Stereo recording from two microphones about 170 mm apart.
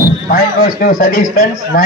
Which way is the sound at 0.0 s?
55° left (ahead or behind).